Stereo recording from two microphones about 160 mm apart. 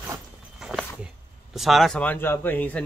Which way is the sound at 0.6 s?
5° right (ahead or behind).